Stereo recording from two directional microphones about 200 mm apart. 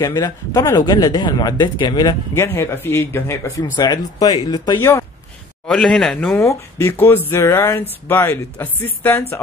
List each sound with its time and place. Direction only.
0.0 s speech: 20° left (ahead or behind)
5.7 s speech: 5° left (ahead or behind)